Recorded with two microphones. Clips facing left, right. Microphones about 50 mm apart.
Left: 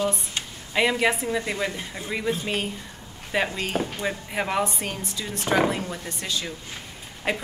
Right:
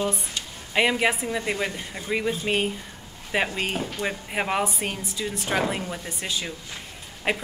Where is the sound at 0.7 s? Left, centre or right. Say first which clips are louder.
Even; centre.